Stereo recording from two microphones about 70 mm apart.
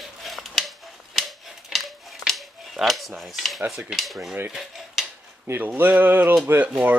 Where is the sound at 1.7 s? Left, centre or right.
Centre.